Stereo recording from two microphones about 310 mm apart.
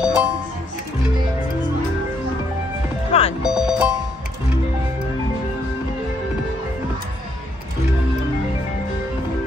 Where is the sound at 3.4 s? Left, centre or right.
Centre.